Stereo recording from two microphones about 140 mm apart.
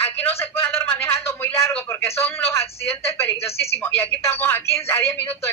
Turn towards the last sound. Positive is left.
turn(degrees=15)  # may be behind; listen again after turning